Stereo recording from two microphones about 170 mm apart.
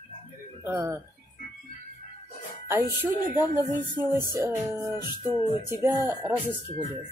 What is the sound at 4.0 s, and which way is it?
Speech, 15° right (ahead or behind).